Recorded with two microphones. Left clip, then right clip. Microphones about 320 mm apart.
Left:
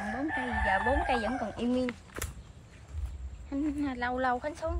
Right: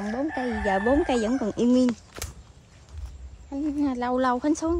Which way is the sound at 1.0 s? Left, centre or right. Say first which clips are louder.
Right 5 dB; right.